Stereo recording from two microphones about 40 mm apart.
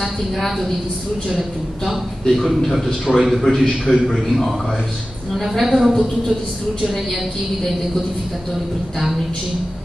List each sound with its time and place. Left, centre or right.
0.0 s a woman's voice: centre
2.2 s a man's voice: centre
3.6 s a man's voice: centre
4.3 s a man's voice: centre